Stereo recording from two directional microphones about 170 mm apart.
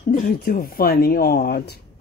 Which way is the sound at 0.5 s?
60° left (ahead or behind).